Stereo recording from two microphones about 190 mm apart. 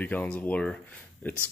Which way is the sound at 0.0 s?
10° left (ahead or behind).